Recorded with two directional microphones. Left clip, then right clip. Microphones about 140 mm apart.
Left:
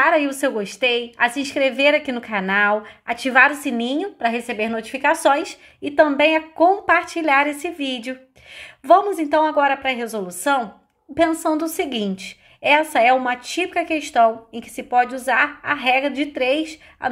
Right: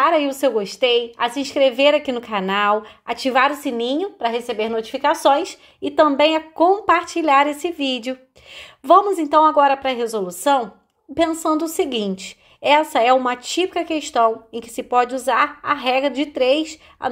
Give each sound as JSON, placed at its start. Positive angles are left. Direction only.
{"t": 0.0, "sound": "a woman's voice", "side_deg": -25}